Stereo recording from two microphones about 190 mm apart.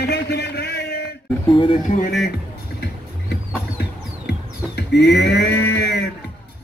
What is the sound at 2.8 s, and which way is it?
Music, 55° left (ahead or behind).